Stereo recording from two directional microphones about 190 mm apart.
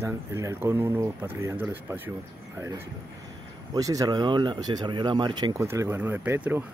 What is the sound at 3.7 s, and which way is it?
Speech, 20° right (ahead or behind).